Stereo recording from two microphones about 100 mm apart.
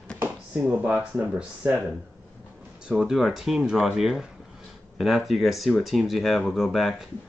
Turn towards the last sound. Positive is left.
turn(degrees=0)  # may be behind; listen again after turning